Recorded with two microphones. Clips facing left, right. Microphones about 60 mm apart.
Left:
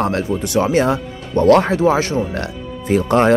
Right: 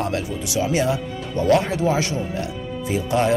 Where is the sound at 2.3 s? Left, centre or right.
Left.